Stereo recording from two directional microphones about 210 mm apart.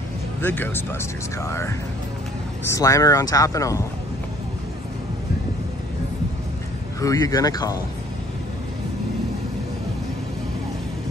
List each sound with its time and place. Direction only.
0.4 s speech: 10° left (ahead or behind)
7.0 s speech: 15° left (ahead or behind)